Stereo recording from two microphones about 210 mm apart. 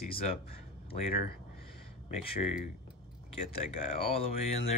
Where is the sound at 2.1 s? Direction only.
30° left (ahead or behind).